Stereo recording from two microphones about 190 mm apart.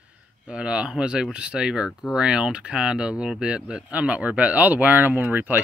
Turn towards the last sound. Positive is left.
turn(degrees=-10)  # may be behind; listen again after turning